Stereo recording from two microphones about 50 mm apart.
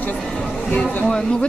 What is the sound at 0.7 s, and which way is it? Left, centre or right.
Speech, left.